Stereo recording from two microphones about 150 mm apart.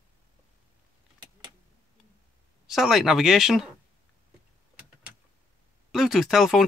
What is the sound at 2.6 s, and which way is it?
Speech, centre (ahead or behind).